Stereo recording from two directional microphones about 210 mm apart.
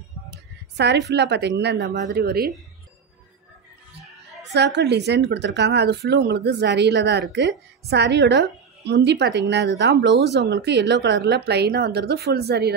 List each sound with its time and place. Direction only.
0.3 s a woman's voice: 55° right (ahead or behind)
4.6 s speech: 55° right (ahead or behind)